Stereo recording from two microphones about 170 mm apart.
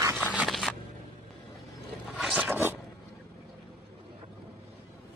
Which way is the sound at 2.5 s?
15° right (ahead or behind).